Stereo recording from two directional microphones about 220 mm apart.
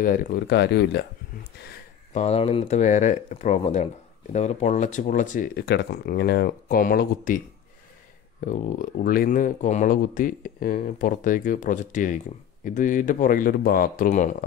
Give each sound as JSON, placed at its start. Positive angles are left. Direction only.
{"t": 0.0, "sound": "speech", "side_deg": 40}
{"t": 2.1, "sound": "speech", "side_deg": 30}